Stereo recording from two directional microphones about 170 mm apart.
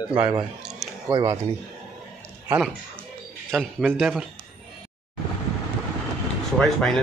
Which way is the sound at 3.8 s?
5° right (ahead or behind).